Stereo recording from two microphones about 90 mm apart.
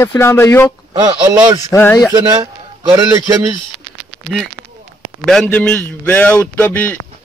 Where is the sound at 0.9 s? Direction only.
55° right (ahead or behind).